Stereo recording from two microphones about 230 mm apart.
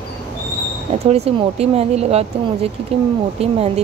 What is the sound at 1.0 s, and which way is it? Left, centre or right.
Speech, right.